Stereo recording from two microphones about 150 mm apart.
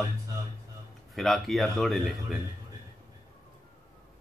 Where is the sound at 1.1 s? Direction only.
Centre (ahead or behind).